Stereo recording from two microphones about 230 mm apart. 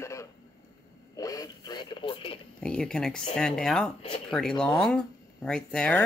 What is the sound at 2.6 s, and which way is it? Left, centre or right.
Speech, centre.